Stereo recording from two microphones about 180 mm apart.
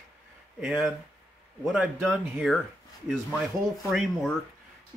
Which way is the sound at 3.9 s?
Centre (ahead or behind).